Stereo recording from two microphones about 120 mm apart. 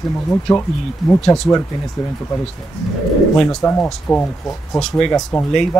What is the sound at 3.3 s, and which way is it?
Speech, 5° left (ahead or behind).